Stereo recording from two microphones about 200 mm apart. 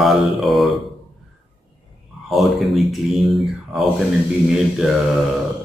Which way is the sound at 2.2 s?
Centre (ahead or behind).